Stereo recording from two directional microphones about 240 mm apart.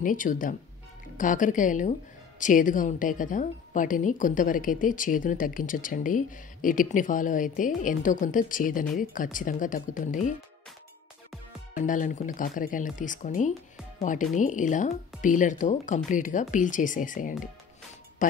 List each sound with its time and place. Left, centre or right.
0.0 s a woman's voice: left
11.7 s a woman's voice: left